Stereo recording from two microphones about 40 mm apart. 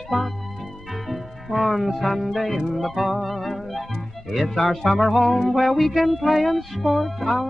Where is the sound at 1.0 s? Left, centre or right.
Centre.